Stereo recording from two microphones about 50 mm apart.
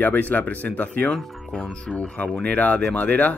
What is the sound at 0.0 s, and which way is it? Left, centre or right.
Speech, left.